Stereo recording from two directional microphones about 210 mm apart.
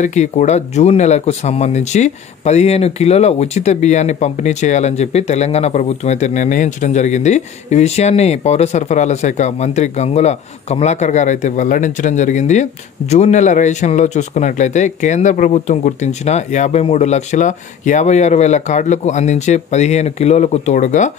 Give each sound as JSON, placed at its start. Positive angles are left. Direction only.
{"t": 0.0, "sound": "speech", "side_deg": 35}